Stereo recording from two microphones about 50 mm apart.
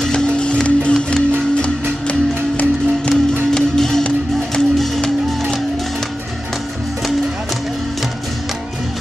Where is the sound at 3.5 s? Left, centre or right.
Centre.